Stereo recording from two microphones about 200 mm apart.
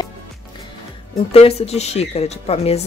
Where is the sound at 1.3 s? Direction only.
30° left (ahead or behind).